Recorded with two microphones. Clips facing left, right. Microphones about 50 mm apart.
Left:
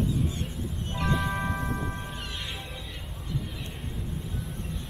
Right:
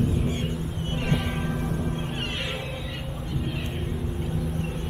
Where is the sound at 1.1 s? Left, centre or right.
Right.